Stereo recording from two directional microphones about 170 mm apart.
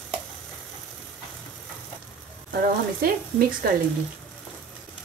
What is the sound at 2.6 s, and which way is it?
Speech, 60° right (ahead or behind).